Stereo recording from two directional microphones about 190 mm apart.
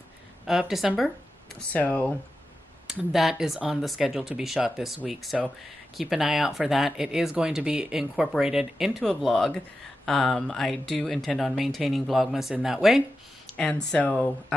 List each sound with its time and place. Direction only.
0.5 s speech: centre (ahead or behind)